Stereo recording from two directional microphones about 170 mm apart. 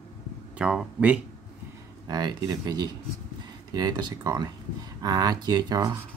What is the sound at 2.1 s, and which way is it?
Speech, 25° right (ahead or behind).